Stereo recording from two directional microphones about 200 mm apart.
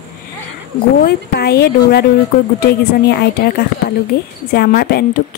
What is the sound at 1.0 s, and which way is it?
A woman's voice, 50° left (ahead or behind).